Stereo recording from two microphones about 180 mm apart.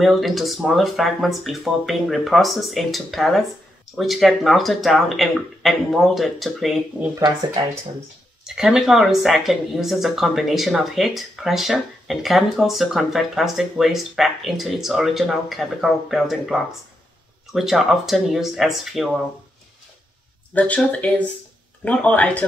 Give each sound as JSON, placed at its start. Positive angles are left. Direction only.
{"t": 0.0, "sound": "speech", "side_deg": 0}
{"t": 7.6, "sound": "speech", "side_deg": -25}
{"t": 8.5, "sound": "speech", "side_deg": -5}
{"t": 17.6, "sound": "speech", "side_deg": 0}
{"t": 20.5, "sound": "speech", "side_deg": 10}